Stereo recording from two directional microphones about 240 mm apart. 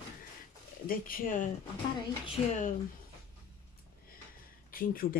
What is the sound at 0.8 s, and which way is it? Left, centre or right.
Speech, left.